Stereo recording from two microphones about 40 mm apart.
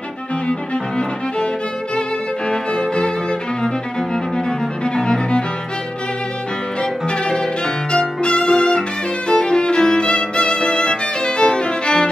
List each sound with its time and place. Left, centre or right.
0.5 s music: left
2.5 s music: left
6.8 s music: centre
9.3 s violin: left